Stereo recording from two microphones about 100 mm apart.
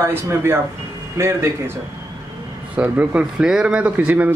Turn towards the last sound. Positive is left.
turn(degrees=-15)  # may be behind; listen again after turning